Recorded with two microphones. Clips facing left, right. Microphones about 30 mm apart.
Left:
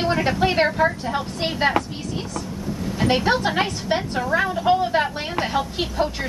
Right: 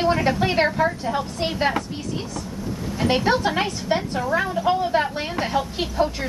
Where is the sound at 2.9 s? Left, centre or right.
Centre.